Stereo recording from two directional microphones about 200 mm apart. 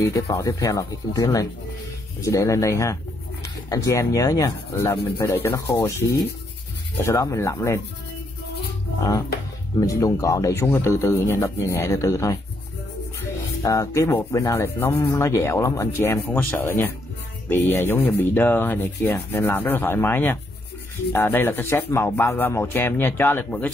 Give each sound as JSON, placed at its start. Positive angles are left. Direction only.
{"t": 0.0, "sound": "speech", "side_deg": 15}
{"t": 9.8, "sound": "speech", "side_deg": 15}
{"t": 13.6, "sound": "speech", "side_deg": 15}